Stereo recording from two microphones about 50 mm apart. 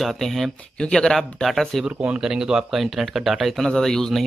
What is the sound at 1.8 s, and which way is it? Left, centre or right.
Speech, centre.